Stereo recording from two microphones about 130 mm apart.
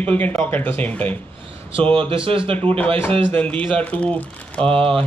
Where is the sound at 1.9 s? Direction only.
40° right (ahead or behind).